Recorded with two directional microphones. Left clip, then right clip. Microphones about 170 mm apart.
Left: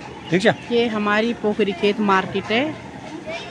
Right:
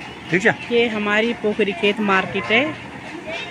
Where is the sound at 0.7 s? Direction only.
5° left (ahead or behind).